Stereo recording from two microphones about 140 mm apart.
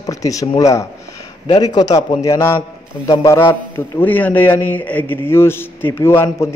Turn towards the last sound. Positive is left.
turn(degrees=20)  # may be behind; listen again after turning